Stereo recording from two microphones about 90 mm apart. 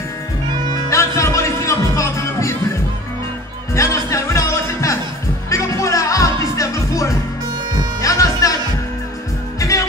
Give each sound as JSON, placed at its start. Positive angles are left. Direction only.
{"t": 0.8, "sound": "music", "side_deg": 35}
{"t": 3.7, "sound": "music", "side_deg": 35}
{"t": 9.6, "sound": "music", "side_deg": 35}